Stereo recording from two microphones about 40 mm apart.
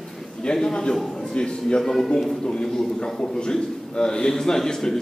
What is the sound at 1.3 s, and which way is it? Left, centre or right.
A man's voice, left.